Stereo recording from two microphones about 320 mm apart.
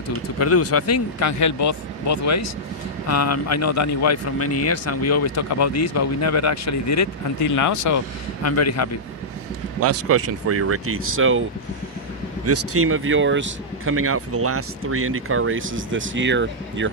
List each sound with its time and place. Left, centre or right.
0.4 s a man's voice: left
9.8 s speech: right
12.4 s speech: right